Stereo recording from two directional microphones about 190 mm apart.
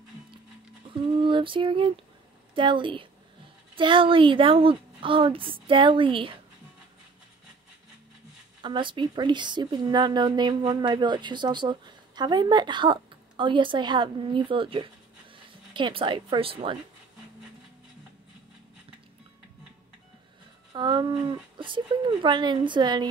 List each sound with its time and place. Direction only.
0.8 s speech: 25° right (ahead or behind)
8.6 s speech: 25° right (ahead or behind)
20.7 s speech: 25° right (ahead or behind)